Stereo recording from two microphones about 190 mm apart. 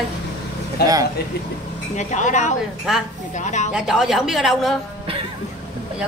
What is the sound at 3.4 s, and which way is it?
Speech, 40° left (ahead or behind).